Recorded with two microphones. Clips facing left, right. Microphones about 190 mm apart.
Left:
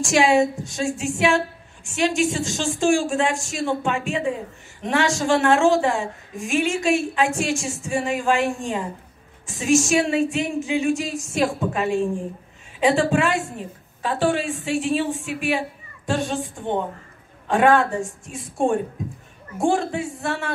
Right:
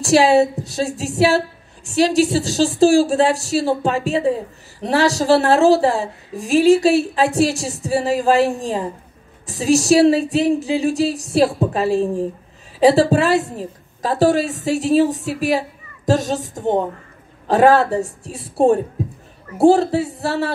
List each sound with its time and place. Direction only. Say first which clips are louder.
0.0 s a woman's voice: right 4 dB; 35° right (ahead or behind)
19.0 s a sound: right 5 dB; 35° right (ahead or behind)
19.6 s a woman's voice: right 8 dB; 35° right (ahead or behind)